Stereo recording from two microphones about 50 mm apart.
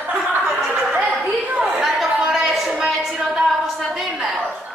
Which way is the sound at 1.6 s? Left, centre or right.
Centre.